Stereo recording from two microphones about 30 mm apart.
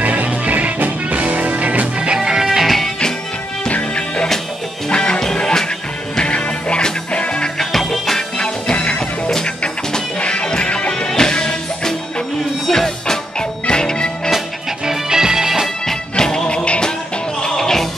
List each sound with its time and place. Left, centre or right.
0.0 s music: right
2.4 s music: centre
3.6 s music: left
7.5 s music: centre
10.2 s music: left
11.1 s music: left
14.9 s music: right
16.2 s music: left
16.4 s music: left
17.4 s music: centre